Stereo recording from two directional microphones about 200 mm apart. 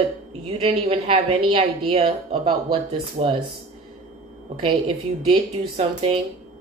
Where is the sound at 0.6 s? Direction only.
30° right (ahead or behind).